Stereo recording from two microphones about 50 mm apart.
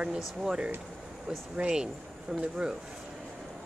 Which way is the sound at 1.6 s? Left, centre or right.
Centre.